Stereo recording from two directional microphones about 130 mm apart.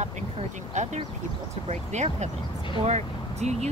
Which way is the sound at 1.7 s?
60° right (ahead or behind).